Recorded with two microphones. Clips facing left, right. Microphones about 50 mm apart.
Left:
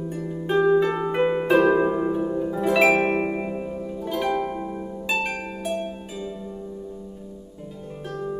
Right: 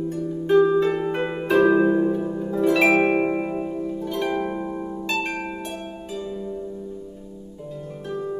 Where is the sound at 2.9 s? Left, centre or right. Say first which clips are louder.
Right 3 dB; centre.